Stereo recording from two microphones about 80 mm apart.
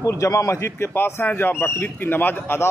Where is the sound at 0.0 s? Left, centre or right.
Left.